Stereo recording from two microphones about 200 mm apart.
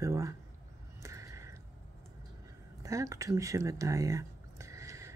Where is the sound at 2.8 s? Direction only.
15° right (ahead or behind).